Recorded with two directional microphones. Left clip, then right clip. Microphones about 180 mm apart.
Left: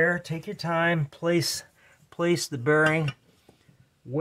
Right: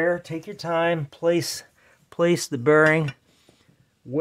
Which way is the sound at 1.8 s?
45° right (ahead or behind).